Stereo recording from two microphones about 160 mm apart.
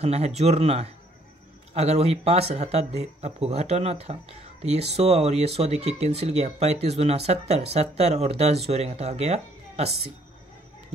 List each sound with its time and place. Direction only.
0.0 s speech: 40° right (ahead or behind)